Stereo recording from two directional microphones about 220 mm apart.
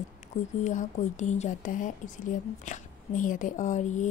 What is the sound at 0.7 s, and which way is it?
Speech, 30° left (ahead or behind).